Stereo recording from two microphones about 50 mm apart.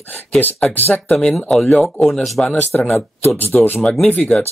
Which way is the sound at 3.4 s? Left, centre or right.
Left.